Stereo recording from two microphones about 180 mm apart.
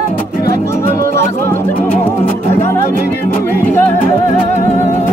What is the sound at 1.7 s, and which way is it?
Music, 45° left (ahead or behind).